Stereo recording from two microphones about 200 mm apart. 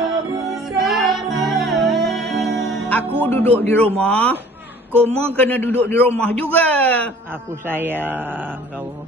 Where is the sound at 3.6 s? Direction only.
10° left (ahead or behind).